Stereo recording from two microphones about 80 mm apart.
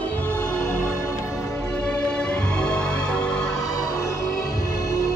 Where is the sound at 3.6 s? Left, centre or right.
Left.